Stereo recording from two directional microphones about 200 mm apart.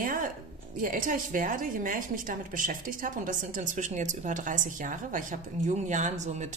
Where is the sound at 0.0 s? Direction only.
45° right (ahead or behind).